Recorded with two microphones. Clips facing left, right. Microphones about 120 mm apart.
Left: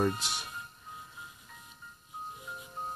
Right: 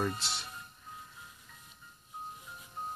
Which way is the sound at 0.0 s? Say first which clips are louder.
Left 4 dB; 15° left (ahead or behind).